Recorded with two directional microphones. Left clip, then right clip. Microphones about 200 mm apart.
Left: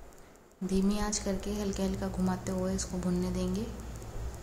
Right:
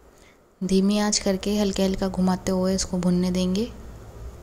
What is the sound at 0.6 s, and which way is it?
Speech, 35° right (ahead or behind).